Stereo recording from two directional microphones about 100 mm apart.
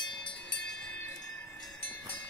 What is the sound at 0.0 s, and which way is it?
Train, 50° left (ahead or behind).